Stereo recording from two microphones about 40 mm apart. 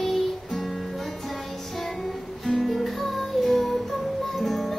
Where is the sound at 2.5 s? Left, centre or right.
Centre.